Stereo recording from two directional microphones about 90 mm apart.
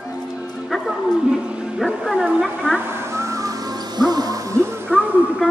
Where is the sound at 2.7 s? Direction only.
30° right (ahead or behind).